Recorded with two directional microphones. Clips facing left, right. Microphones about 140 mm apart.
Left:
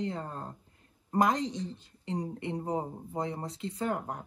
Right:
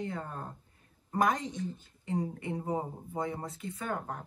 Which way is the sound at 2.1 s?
25° left (ahead or behind).